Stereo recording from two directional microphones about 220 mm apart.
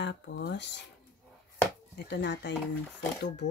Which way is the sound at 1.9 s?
50° left (ahead or behind).